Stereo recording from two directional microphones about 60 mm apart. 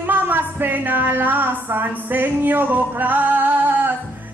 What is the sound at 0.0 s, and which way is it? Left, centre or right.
Speech, right.